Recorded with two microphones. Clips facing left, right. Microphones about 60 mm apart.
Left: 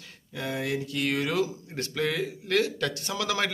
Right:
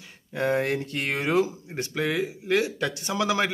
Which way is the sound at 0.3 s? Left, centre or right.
Right.